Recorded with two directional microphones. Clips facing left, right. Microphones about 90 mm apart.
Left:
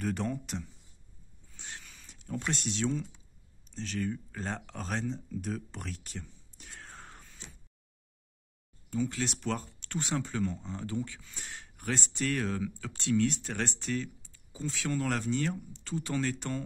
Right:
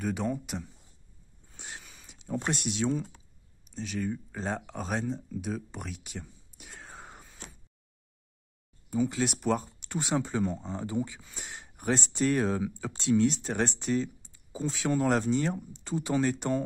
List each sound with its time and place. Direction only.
0.0 s speech: 5° right (ahead or behind)
1.6 s a sound: 15° right (ahead or behind)
2.5 s speech: 10° right (ahead or behind)
8.9 s speech: 15° right (ahead or behind)